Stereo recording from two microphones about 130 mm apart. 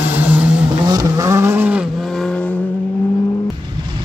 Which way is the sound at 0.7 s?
30° right (ahead or behind).